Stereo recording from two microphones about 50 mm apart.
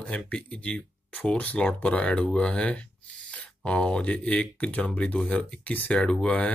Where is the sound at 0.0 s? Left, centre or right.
Left.